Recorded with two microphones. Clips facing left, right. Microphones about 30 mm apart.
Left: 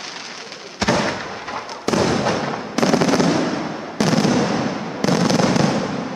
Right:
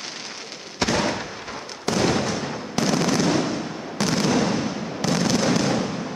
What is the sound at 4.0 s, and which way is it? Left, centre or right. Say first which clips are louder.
Fireworks: left 4 dB; centre.